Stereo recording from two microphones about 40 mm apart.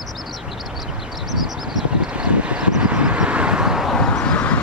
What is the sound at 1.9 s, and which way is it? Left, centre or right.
Vehicle, right.